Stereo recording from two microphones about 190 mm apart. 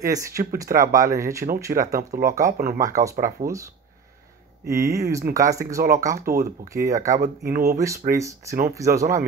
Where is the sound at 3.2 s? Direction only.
45° right (ahead or behind).